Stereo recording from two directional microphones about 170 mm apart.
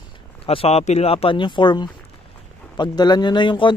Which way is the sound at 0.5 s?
35° left (ahead or behind).